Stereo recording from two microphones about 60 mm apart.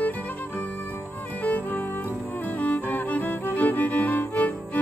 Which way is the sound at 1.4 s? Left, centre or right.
Left.